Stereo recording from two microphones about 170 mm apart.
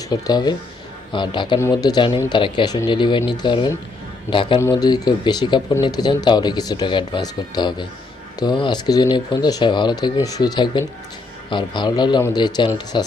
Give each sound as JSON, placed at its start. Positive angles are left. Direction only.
{"t": 0.1, "sound": "speech", "side_deg": 25}